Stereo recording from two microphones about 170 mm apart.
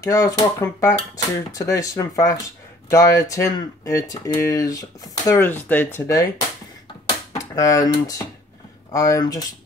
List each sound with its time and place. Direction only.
0.0 s speech: 20° left (ahead or behind)